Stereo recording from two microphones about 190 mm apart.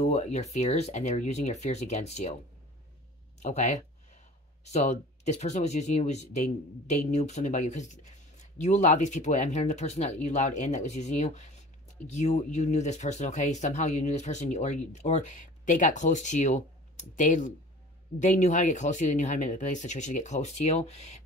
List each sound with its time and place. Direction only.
0.0 s speech: 35° left (ahead or behind)
3.3 s speech: 40° left (ahead or behind)